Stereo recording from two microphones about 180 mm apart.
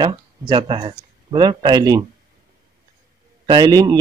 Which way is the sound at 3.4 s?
25° right (ahead or behind).